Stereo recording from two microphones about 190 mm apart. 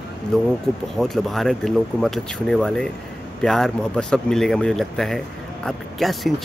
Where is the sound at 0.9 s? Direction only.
Centre (ahead or behind).